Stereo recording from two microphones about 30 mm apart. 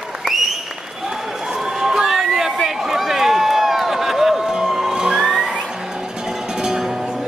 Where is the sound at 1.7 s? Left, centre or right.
Centre.